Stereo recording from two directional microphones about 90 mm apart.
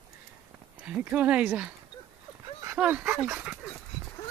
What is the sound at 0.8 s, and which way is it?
Speech, 15° right (ahead or behind).